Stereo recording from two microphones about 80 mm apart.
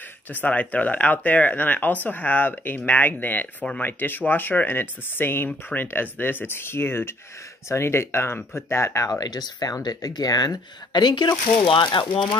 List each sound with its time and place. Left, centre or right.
0.3 s speech: left